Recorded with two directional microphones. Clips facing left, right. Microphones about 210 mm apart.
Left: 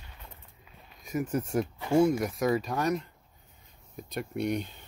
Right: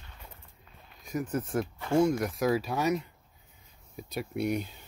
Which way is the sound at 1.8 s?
5° left (ahead or behind).